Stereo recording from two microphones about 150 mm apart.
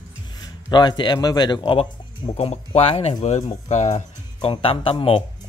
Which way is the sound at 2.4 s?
45° left (ahead or behind).